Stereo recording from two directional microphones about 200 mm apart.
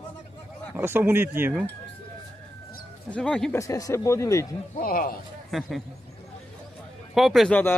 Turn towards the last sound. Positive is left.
turn(degrees=5)  # may be behind; listen again after turning